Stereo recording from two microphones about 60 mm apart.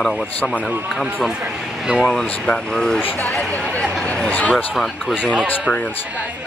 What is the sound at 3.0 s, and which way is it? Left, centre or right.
Speech, left.